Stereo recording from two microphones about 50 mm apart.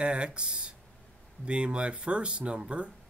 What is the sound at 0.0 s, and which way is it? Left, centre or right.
Speech, centre.